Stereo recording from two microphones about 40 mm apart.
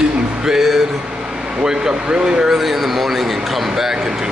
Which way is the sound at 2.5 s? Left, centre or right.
Centre.